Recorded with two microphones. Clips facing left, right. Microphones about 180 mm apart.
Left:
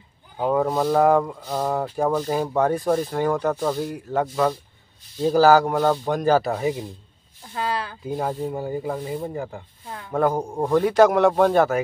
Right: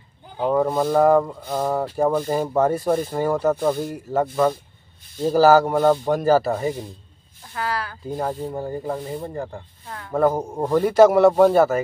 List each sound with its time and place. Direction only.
0.4 s speech: 5° left (ahead or behind)
7.5 s speech: 20° left (ahead or behind)
8.2 s speech: 5° left (ahead or behind)